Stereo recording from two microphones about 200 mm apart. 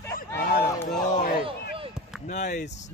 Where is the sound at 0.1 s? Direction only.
45° left (ahead or behind).